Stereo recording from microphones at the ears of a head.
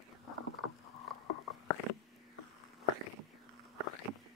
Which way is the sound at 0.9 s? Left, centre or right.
Left.